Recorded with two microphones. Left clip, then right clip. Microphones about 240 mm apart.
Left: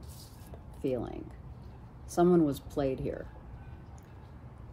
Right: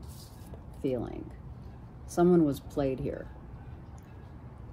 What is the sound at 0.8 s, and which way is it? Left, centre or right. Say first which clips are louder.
Speech: right 1 dB; centre.